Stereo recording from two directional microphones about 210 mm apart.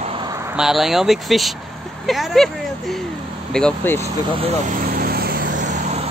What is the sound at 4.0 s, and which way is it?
Vehicle, 30° right (ahead or behind).